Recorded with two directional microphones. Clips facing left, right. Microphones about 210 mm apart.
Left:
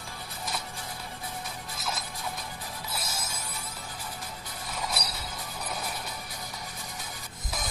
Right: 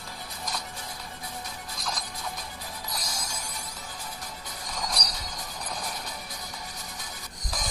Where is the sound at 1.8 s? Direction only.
5° left (ahead or behind).